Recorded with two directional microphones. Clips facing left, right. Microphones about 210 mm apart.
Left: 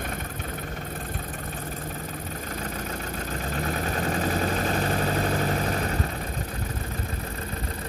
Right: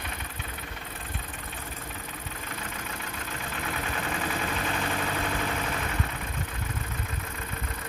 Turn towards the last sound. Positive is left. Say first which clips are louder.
# left 5 dB
turn(degrees=35)  # may be behind; listen again after turning